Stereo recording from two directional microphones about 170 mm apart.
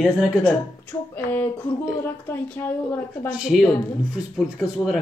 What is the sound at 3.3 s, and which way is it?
A man's voice, 5° right (ahead or behind).